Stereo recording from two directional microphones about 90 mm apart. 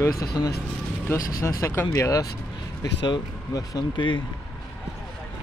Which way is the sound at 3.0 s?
55° left (ahead or behind).